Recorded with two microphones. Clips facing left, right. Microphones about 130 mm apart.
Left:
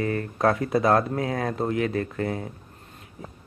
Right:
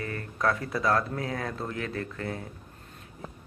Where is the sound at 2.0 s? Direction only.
50° left (ahead or behind).